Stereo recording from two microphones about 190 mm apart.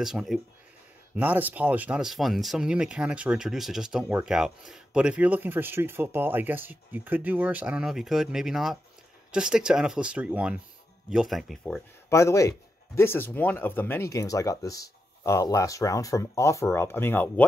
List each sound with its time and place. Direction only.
0.0 s speech: centre (ahead or behind)
12.1 s speech: 15° left (ahead or behind)